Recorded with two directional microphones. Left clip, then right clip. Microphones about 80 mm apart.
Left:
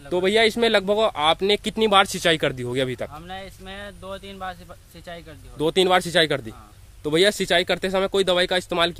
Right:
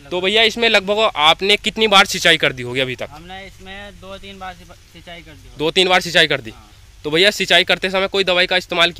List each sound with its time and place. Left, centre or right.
0.2 s a man's voice: left
0.7 s speech: left
3.1 s speech: left
6.2 s speech: left
7.9 s speech: left